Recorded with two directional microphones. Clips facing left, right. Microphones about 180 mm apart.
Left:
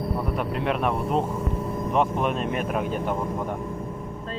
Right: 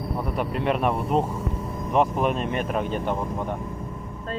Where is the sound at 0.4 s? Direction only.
Centre (ahead or behind).